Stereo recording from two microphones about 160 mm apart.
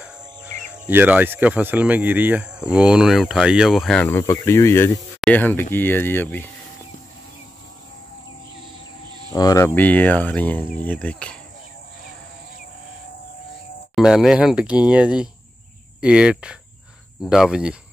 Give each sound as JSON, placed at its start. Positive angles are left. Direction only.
{"t": 0.8, "sound": "speech", "side_deg": -10}
{"t": 4.0, "sound": "cricket", "side_deg": 15}
{"t": 4.9, "sound": "speech", "side_deg": 0}
{"t": 5.4, "sound": "cricket", "side_deg": 10}
{"t": 9.3, "sound": "cricket", "side_deg": 20}
{"t": 13.9, "sound": "speech", "side_deg": -5}